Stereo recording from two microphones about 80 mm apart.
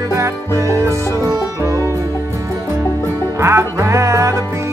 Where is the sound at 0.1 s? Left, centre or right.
Right.